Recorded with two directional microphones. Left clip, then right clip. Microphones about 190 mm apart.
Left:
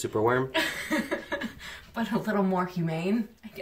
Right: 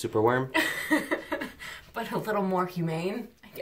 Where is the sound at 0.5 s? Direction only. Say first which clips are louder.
Right 2 dB; 45° right (ahead or behind).